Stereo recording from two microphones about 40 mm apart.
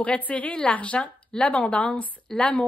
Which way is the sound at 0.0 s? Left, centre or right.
Left.